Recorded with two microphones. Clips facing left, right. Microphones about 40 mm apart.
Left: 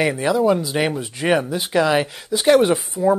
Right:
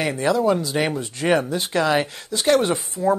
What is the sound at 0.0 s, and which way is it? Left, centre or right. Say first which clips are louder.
Speech: left 2 dB; centre.